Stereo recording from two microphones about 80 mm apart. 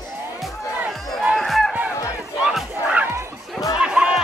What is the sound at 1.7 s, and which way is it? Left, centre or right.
Music, centre.